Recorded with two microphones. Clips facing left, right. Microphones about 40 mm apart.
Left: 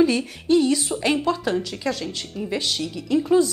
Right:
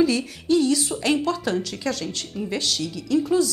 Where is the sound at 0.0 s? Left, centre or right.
Centre.